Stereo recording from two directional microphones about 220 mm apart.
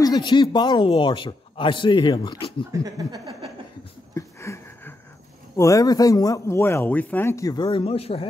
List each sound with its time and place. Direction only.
0.0 s a man's voice: 20° left (ahead or behind)
2.7 s speech: 15° right (ahead or behind)
4.1 s a sound: 10° left (ahead or behind)
5.6 s speech: 15° left (ahead or behind)